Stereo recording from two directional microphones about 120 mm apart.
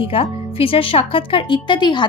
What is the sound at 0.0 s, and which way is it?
Speech, 50° left (ahead or behind).